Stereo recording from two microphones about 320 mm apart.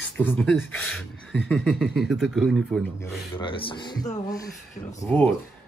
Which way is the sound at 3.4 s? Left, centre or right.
Centre.